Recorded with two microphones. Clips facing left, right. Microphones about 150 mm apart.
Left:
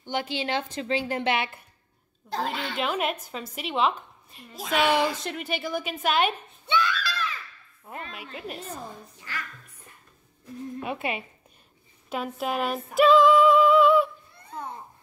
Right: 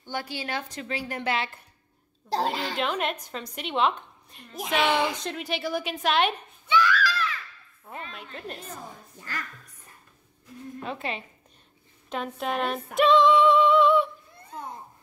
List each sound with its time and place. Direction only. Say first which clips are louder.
0.0 s a woman's voice: left 4 dB; 20° left (ahead or behind)
2.2 s a woman's voice: right 3 dB; 35° right (ahead or behind)
2.8 s a woman's voice: left 2 dB; 5° left (ahead or behind)
4.6 s a woman's voice: left 1 dB; 20° right (ahead or behind)
5.1 s a woman's voice: even; centre (ahead or behind)
6.7 s a sound: right 3 dB; 20° left (ahead or behind)
8.1 s a woman's voice: left 1 dB; 5° left (ahead or behind)
10.8 s speech: left 2 dB; 10° left (ahead or behind)
12.1 s female singing: left 1 dB; 5° left (ahead or behind)